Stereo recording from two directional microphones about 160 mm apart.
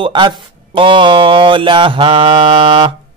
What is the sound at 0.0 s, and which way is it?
Speech, 30° right (ahead or behind).